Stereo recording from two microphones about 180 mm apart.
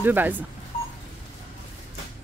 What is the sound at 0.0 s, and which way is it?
Speech, 10° right (ahead or behind).